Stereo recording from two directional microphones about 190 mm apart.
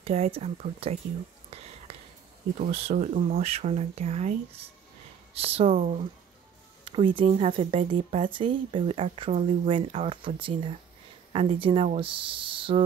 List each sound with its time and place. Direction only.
0.0 s speech: 30° right (ahead or behind)
1.5 s a sound: 30° right (ahead or behind)
2.6 s speech: 35° right (ahead or behind)
6.8 s speech: 25° right (ahead or behind)